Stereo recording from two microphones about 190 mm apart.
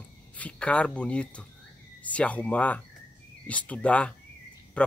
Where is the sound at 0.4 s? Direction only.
5° left (ahead or behind).